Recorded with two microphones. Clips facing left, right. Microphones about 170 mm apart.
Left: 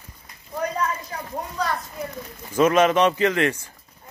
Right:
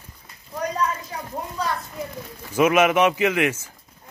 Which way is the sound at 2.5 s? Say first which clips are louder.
Even; 10° right (ahead or behind).